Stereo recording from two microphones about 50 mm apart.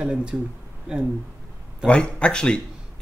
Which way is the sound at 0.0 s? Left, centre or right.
Centre.